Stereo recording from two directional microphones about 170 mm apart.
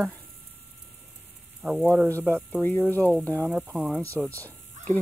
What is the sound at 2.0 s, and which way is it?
Speech, 15° right (ahead or behind).